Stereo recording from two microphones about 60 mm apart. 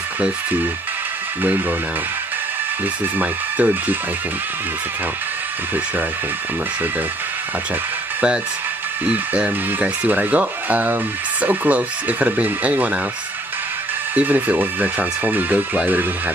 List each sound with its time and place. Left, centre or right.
3.2 s speech: right
9.0 s speech: right
14.1 s speech: right